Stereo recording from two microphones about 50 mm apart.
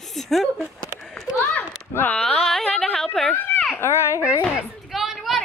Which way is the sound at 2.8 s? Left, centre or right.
Centre.